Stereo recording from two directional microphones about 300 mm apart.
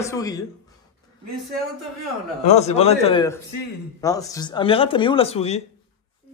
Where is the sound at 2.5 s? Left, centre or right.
Left.